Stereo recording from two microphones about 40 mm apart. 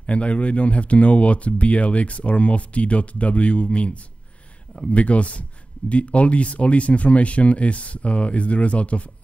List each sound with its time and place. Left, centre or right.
0.0 s speech: left